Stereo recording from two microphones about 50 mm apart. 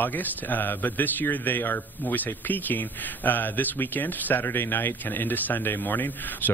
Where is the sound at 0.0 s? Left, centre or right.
Left.